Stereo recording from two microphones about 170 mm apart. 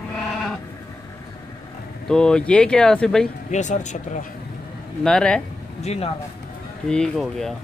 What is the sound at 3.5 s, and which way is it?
Speech, 45° left (ahead or behind).